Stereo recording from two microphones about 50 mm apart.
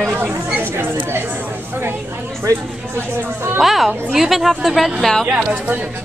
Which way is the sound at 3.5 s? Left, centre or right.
Centre.